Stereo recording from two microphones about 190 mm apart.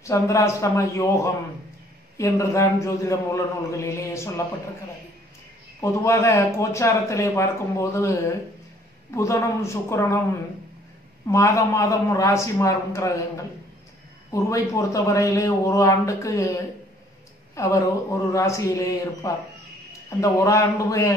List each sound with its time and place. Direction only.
0.0 s speech: 15° left (ahead or behind)
5.8 s speech: 15° left (ahead or behind)
11.2 s speech: 15° left (ahead or behind)
17.6 s a man's voice: 15° left (ahead or behind)